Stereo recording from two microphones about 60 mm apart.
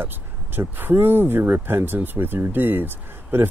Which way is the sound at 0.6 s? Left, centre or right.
Right.